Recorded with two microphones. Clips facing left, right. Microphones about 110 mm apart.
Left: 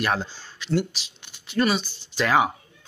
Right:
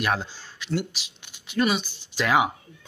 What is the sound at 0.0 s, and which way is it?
Speech, 5° right (ahead or behind).